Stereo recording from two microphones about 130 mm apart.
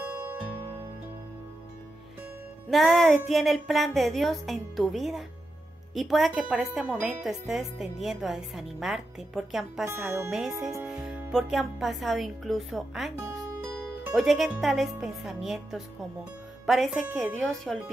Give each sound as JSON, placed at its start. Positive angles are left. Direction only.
{"t": 0.0, "sound": "music", "side_deg": -15}
{"t": 2.7, "sound": "speech", "side_deg": 0}
{"t": 9.8, "sound": "speech", "side_deg": -20}
{"t": 10.9, "sound": "speech", "side_deg": -5}
{"t": 14.1, "sound": "speech", "side_deg": 0}